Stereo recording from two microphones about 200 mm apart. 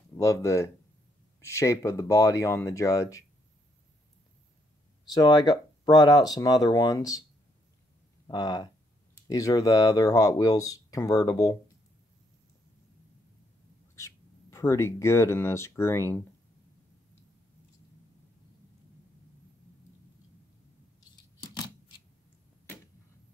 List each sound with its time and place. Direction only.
0.1 s speech: 15° left (ahead or behind)
5.1 s speech: 20° left (ahead or behind)
8.3 s speech: 20° left (ahead or behind)
13.9 s speech: 15° left (ahead or behind)